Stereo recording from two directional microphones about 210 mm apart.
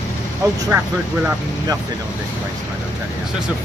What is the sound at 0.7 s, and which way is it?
Speech, 15° right (ahead or behind).